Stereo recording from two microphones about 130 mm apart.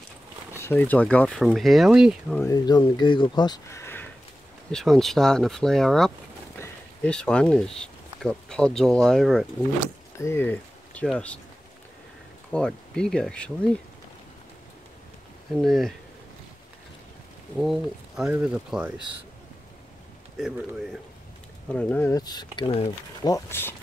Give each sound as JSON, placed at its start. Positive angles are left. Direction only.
{"t": 0.6, "sound": "speech", "side_deg": 15}
{"t": 2.4, "sound": "speech", "side_deg": 30}
{"t": 3.6, "sound": "a sound", "side_deg": 20}
{"t": 4.6, "sound": "speech", "side_deg": 5}
{"t": 10.1, "sound": "speech", "side_deg": 20}
{"t": 12.5, "sound": "speech", "side_deg": 5}
{"t": 15.5, "sound": "speech", "side_deg": 0}
{"t": 17.6, "sound": "speech", "side_deg": -5}
{"t": 21.7, "sound": "speech", "side_deg": 15}
{"t": 22.1, "sound": "speech", "side_deg": 30}
{"t": 23.2, "sound": "speech", "side_deg": 20}